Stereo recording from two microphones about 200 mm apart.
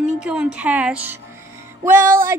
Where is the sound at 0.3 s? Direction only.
5° right (ahead or behind).